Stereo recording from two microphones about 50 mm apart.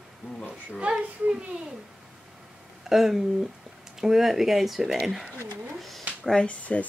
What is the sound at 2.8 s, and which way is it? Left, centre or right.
Speech, centre.